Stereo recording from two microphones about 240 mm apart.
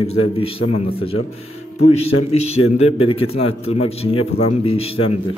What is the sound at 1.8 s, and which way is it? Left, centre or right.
Speech, left.